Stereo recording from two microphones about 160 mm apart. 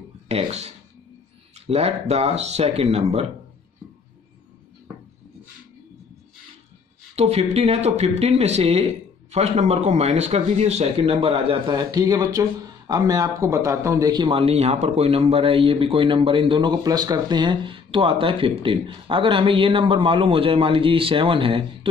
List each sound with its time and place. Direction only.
0.3 s speech: 40° right (ahead or behind)
1.7 s speech: 40° right (ahead or behind)
7.2 s speech: 40° right (ahead or behind)